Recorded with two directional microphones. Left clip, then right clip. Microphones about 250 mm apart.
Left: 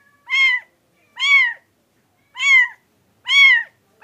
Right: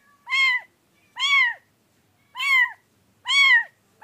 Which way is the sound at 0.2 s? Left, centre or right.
Centre.